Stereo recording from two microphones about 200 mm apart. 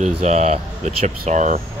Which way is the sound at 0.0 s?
35° right (ahead or behind).